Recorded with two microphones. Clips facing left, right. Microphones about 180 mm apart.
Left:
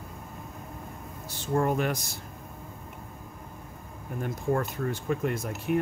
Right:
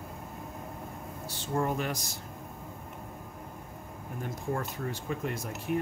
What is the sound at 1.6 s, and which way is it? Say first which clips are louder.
Speech: left 4 dB; 55° left (ahead or behind).